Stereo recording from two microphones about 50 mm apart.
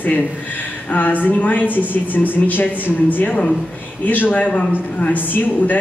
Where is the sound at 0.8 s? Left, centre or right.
Left.